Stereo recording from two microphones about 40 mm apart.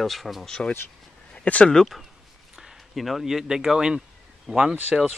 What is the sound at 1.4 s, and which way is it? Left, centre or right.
Speech, left.